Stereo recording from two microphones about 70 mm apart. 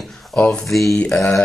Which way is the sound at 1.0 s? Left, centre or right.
Centre.